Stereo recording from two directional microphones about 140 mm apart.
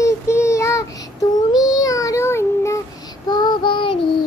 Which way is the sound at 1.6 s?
25° left (ahead or behind).